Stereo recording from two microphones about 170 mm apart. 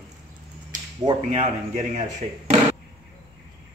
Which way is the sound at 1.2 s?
40° right (ahead or behind).